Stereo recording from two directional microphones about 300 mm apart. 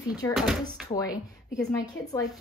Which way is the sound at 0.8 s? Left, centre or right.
Centre.